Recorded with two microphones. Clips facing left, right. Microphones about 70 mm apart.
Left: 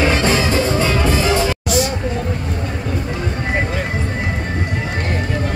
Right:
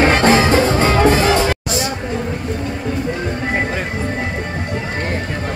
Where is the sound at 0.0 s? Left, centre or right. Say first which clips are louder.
Right 4 dB; right.